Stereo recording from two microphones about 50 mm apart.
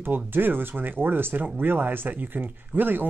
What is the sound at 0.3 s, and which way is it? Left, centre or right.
Speech, right.